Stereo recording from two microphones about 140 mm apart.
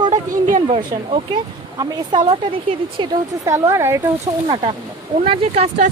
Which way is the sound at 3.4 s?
20° right (ahead or behind).